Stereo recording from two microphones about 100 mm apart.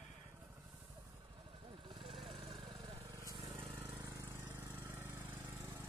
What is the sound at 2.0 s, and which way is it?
Lawn mower, 65° right (ahead or behind).